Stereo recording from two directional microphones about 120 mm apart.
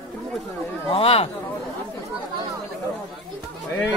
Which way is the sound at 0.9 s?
55° left (ahead or behind).